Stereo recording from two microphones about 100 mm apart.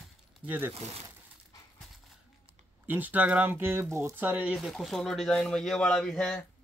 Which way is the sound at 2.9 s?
15° right (ahead or behind).